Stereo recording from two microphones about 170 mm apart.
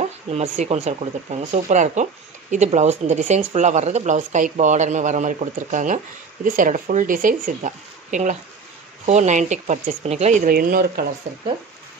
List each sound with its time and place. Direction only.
0.0 s speech: 40° right (ahead or behind)
10.4 s speech: 60° right (ahead or behind)